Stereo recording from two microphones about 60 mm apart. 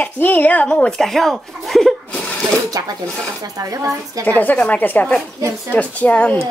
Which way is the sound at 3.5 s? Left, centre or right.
Right.